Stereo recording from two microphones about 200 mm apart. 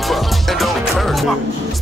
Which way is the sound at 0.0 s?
Centre (ahead or behind).